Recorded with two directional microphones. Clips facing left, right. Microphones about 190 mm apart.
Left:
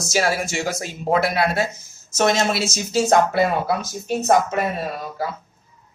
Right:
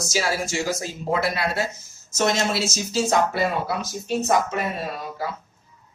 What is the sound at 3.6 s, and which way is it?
Speech, 50° left (ahead or behind).